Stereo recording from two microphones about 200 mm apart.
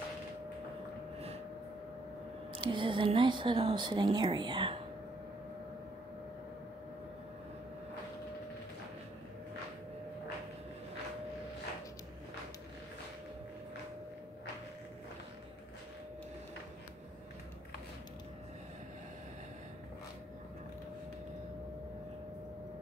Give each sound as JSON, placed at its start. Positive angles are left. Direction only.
{"t": 2.5, "sound": "speech", "side_deg": -25}